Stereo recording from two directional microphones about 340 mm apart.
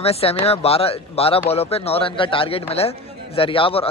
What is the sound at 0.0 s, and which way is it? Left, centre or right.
Speech, centre.